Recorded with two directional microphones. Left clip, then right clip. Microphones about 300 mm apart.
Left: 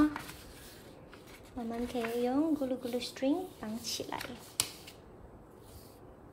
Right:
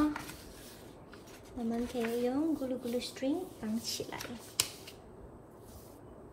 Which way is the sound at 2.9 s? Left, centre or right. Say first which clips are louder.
Left 1 dB; centre.